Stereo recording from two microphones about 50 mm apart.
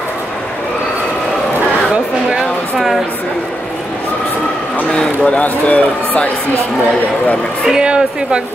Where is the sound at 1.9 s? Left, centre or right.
Centre.